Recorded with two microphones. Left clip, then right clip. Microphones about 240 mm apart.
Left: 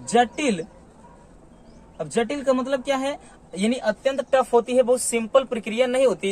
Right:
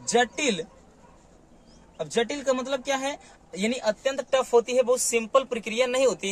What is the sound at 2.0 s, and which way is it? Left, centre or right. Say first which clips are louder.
A man's voice: left 2 dB; centre.